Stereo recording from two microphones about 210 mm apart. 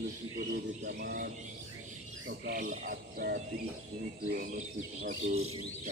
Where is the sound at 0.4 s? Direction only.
50° right (ahead or behind).